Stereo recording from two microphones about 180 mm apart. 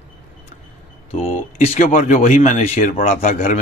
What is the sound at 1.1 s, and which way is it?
A man's voice, 35° left (ahead or behind).